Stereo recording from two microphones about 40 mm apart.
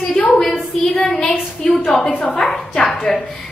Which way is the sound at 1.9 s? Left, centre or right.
Left.